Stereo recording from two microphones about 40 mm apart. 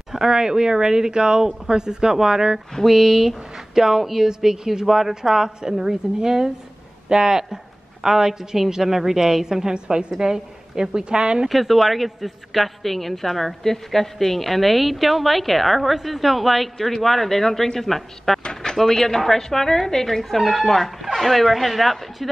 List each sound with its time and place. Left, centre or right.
0.1 s a woman's voice: centre
11.4 s a woman's voice: centre
18.4 s a woman's voice: centre